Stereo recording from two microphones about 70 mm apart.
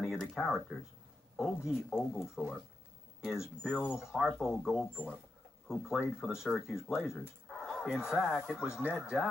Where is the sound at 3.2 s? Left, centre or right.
Centre.